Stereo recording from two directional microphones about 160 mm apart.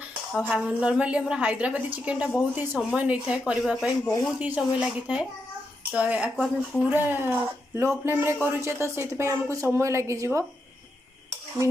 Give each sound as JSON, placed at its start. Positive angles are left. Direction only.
{"t": 0.4, "sound": "a woman's voice", "side_deg": -5}